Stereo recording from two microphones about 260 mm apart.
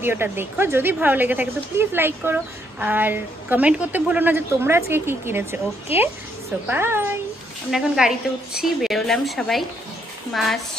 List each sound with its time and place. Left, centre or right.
0.0 s a woman's voice: centre
5.9 s a woman's voice: left
6.7 s a woman's voice: centre